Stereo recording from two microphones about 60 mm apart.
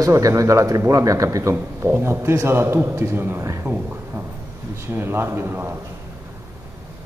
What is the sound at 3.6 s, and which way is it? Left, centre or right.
Speech, right.